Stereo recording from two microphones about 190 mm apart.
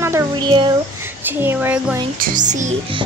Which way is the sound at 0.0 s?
15° right (ahead or behind).